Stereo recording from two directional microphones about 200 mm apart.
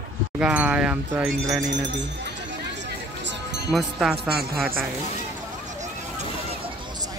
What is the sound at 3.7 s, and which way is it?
Speech, 5° right (ahead or behind).